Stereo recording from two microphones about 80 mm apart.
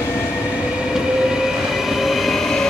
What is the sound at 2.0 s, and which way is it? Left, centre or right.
Train, centre.